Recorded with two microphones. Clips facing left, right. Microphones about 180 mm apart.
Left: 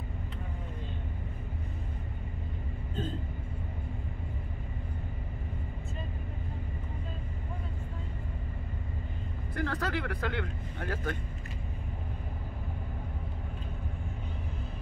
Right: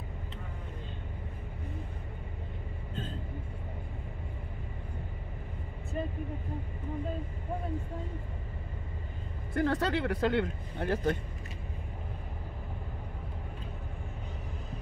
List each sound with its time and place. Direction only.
9.5 s speech: 25° right (ahead or behind)